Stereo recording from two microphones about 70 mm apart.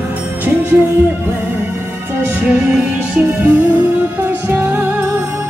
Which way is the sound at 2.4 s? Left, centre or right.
Centre.